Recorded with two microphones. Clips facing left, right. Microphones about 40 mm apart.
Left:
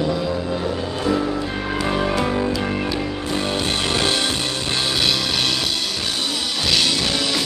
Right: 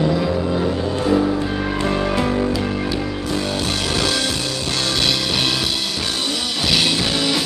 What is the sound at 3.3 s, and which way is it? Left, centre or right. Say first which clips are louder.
Music: left 1 dB; left.